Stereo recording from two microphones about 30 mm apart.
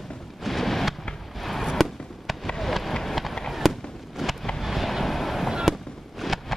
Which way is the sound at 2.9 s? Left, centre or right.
Centre.